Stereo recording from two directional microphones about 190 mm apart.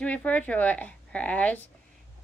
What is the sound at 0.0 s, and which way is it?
A woman's voice, 5° left (ahead or behind).